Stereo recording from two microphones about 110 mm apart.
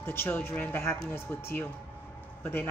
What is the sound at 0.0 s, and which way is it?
Speech, 20° left (ahead or behind).